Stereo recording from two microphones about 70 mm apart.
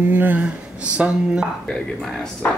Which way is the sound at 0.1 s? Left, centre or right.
Right.